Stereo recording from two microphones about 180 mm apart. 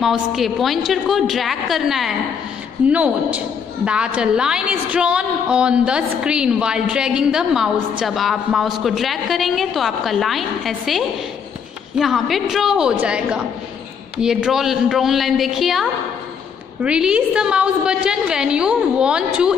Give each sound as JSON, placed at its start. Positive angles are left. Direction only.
{"t": 0.0, "sound": "a woman's voice", "side_deg": 0}